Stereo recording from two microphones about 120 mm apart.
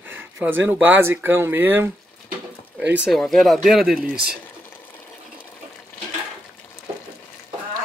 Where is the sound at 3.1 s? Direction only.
Centre (ahead or behind).